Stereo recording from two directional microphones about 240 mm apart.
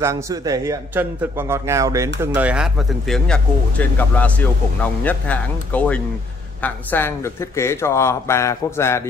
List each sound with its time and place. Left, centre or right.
0.0 s a man's voice: centre